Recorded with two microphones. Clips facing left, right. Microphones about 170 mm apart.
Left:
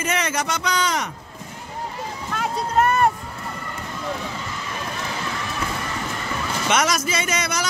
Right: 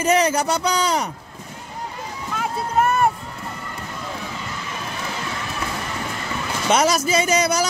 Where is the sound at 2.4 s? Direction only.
5° right (ahead or behind).